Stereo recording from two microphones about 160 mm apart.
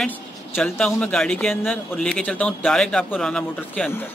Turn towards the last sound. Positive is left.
turn(degrees=5)  # may be behind; listen again after turning